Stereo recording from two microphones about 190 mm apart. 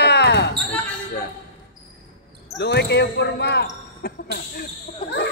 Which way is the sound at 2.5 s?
60° left (ahead or behind).